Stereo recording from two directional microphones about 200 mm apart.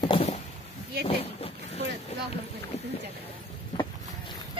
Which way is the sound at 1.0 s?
30° left (ahead or behind).